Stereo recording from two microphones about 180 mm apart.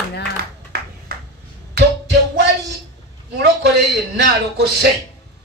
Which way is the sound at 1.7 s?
65° right (ahead or behind).